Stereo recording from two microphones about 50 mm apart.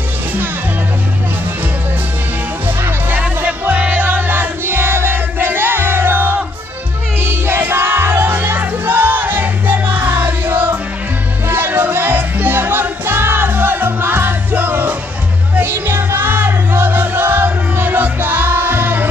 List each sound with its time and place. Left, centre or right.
3.4 s music: right